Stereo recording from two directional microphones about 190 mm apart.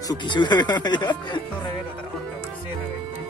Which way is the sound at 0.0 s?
25° left (ahead or behind).